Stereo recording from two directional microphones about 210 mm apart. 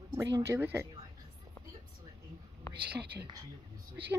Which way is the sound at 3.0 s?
50° right (ahead or behind).